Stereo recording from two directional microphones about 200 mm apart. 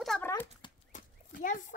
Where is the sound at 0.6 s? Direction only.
25° left (ahead or behind).